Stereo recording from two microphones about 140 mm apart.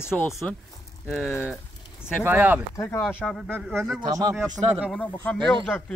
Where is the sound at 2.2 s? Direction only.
10° right (ahead or behind).